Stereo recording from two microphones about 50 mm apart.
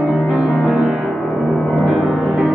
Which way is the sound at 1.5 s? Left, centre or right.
Centre.